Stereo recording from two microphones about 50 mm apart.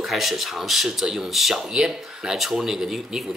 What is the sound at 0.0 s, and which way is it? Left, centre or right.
Speech, centre.